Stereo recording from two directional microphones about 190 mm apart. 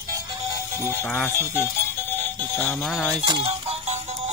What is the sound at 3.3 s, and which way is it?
Speech, 25° right (ahead or behind).